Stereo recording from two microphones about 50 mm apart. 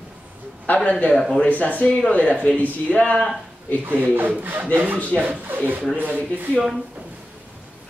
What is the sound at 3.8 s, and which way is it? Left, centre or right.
Speech, right.